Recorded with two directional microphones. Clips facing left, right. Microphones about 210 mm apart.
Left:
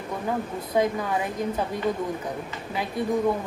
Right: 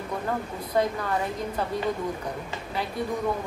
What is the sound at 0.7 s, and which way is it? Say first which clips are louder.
Speech: left 2 dB; 15° left (ahead or behind).